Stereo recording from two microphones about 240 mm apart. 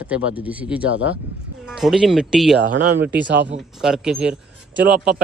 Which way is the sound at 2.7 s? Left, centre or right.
Right.